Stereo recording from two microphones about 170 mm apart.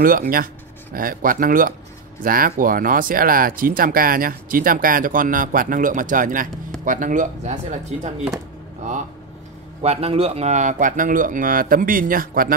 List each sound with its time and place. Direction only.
0.0 s speech: 55° right (ahead or behind)
9.8 s speech: 35° right (ahead or behind); by 12.5 s 55° right (ahead or behind)